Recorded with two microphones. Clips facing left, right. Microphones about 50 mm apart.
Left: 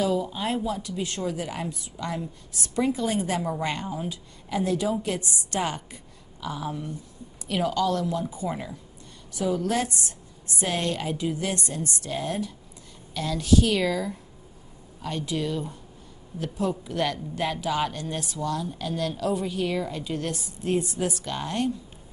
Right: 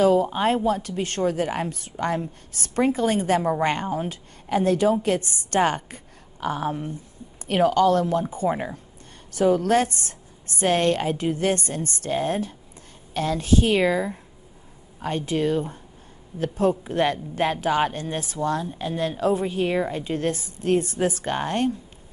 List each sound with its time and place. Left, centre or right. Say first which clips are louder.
0.0 s a woman's voice: right 7 dB; right
20.6 s speech: right 4 dB; right